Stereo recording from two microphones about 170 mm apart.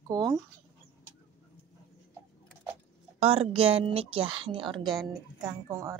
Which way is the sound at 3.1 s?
35° right (ahead or behind).